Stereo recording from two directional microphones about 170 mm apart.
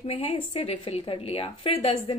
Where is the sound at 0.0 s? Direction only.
30° left (ahead or behind).